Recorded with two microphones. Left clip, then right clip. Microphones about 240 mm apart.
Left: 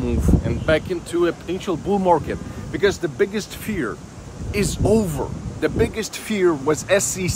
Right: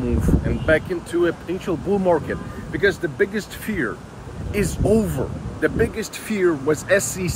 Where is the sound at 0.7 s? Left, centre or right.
Centre.